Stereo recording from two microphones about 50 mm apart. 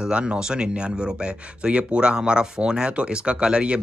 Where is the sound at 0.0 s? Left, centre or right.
Centre.